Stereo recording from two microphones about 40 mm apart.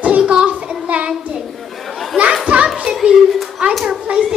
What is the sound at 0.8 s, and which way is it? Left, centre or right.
Child singing, right.